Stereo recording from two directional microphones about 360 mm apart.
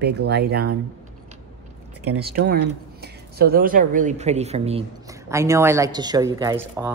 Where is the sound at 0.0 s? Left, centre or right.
Right.